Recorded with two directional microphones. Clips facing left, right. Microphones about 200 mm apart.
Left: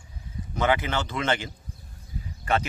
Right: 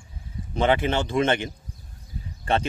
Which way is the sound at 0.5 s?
25° right (ahead or behind).